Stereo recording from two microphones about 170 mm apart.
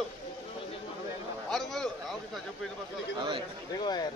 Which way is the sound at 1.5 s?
Centre (ahead or behind).